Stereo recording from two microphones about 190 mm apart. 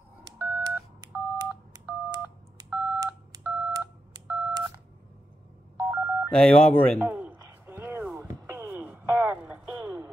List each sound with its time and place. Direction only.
0.4 s telephone dialing: 10° right (ahead or behind)
5.8 s telephone dialing: 10° right (ahead or behind)
6.3 s speech: 5° left (ahead or behind)
7.0 s a sound: 10° right (ahead or behind)